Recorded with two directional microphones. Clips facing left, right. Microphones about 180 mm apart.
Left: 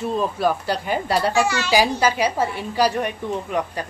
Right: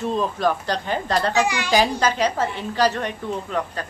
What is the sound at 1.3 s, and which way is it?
Speech, 15° right (ahead or behind).